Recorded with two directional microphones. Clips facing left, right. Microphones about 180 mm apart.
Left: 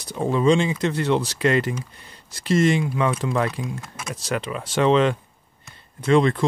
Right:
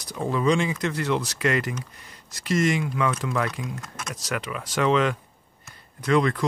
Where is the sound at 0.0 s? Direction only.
25° left (ahead or behind).